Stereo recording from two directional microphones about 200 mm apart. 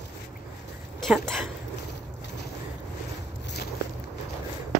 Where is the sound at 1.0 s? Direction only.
Centre (ahead or behind).